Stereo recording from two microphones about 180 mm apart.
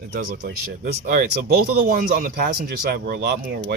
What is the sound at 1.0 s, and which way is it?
Speech, 55° right (ahead or behind).